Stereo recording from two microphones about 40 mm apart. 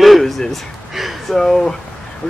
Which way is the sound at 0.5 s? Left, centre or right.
Centre.